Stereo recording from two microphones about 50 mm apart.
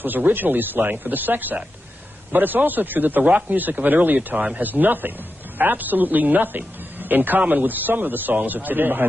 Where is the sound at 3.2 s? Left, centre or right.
Right.